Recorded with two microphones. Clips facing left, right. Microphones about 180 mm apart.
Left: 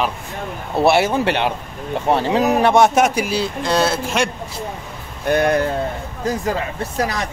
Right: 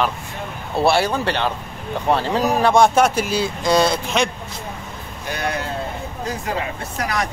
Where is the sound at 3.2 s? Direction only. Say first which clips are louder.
Right 1 dB; 5° left (ahead or behind).